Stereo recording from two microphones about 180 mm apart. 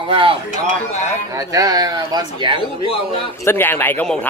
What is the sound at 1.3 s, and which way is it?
Speech, 20° right (ahead or behind).